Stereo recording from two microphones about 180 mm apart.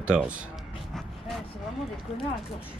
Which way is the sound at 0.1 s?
5° right (ahead or behind).